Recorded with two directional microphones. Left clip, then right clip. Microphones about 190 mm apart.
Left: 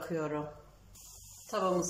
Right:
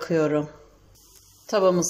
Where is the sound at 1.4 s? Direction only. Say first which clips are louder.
Right 12 dB; 55° right (ahead or behind).